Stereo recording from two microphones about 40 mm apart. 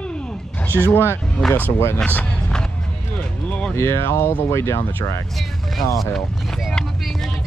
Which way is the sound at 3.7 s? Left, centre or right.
Left.